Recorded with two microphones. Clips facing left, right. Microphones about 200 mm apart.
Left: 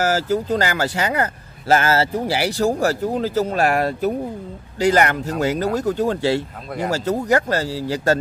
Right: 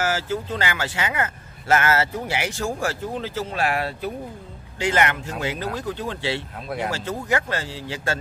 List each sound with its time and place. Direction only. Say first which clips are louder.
0.0 s speech: left 5 dB; 40° left (ahead or behind)